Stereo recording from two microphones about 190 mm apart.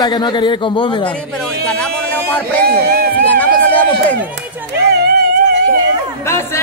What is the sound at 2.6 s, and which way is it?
Speech, 55° right (ahead or behind).